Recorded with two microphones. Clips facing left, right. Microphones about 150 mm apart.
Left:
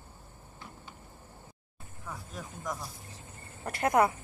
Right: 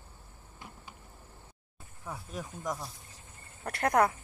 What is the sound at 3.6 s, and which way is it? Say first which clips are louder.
Cricket: left 1 dB; 5° left (ahead or behind).